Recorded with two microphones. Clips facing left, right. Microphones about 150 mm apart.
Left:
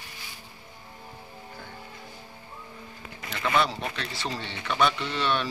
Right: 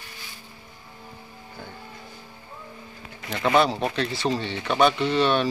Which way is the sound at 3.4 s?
35° right (ahead or behind).